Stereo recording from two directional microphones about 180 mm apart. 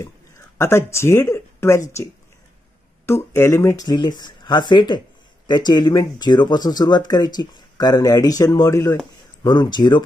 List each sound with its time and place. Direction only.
0.6 s speech: 15° left (ahead or behind)
3.1 s speech: 15° left (ahead or behind)